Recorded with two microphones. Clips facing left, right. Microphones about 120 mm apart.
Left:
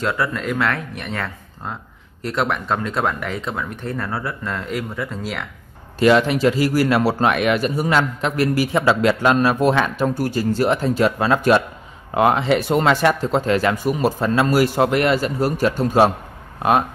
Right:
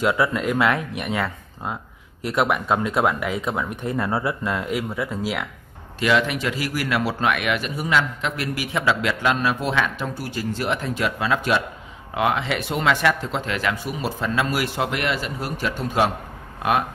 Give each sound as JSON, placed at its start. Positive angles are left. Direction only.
{"t": 0.0, "sound": "speech", "side_deg": -10}
{"t": 5.9, "sound": "a man's voice", "side_deg": 35}